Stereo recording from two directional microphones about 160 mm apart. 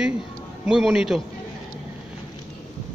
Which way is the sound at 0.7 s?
5° right (ahead or behind).